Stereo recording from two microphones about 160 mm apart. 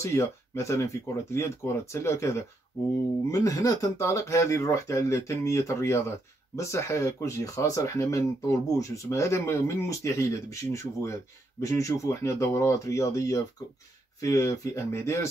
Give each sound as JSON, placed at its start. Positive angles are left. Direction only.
{"t": 0.0, "sound": "speech", "side_deg": 15}